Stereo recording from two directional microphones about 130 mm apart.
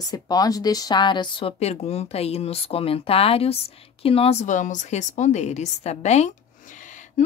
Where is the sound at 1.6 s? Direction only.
55° left (ahead or behind).